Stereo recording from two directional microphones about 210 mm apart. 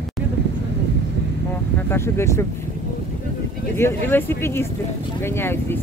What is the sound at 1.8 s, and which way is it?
Speech, 10° left (ahead or behind).